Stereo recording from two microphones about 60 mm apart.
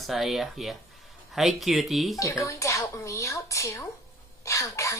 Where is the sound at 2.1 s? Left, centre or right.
Left.